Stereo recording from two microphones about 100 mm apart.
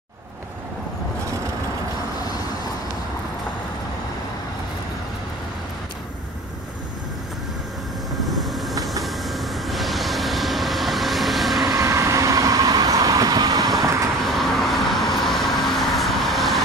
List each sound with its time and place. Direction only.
8.3 s vehicle: centre (ahead or behind)
11.7 s vehicle: 30° right (ahead or behind)
14.2 s vehicle: centre (ahead or behind)